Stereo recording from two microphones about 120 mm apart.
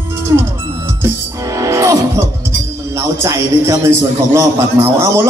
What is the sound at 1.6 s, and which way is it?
Music, 25° right (ahead or behind).